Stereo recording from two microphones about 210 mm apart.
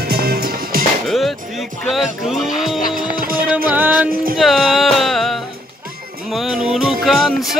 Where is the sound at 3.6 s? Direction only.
10° right (ahead or behind).